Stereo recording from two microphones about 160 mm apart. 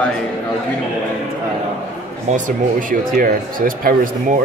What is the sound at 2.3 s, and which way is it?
Speech, 60° right (ahead or behind).